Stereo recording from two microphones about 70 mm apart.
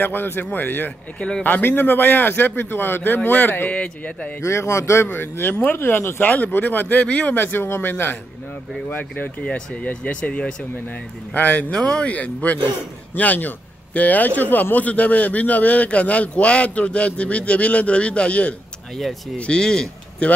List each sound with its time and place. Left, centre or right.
0.0 s a man's voice: left
4.4 s a man's voice: left
5.0 s a man's voice: left
11.7 s speech: centre
12.1 s a man's voice: left